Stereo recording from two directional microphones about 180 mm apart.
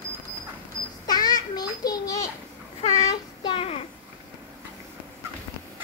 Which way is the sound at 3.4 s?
30° left (ahead or behind).